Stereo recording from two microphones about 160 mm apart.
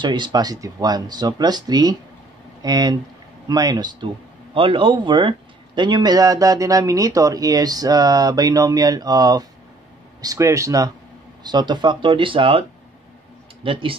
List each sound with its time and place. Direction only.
0.0 s speech: 30° right (ahead or behind)
13.7 s speech: 30° right (ahead or behind)